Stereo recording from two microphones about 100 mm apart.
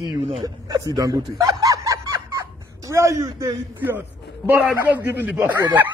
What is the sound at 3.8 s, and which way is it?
A man's voice, 20° right (ahead or behind).